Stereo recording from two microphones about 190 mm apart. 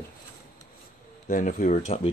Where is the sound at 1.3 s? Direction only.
45° left (ahead or behind).